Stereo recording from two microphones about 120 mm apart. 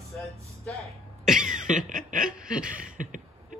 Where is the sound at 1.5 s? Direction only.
90° right.